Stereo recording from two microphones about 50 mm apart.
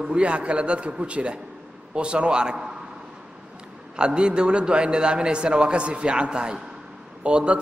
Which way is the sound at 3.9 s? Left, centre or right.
Centre.